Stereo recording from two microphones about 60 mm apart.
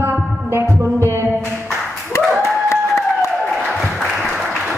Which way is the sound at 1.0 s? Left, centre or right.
Right.